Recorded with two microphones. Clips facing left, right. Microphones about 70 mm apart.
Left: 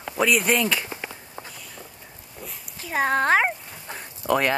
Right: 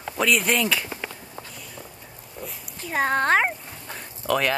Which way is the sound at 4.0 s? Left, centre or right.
Centre.